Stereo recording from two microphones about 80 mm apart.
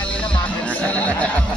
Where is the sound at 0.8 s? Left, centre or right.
Centre.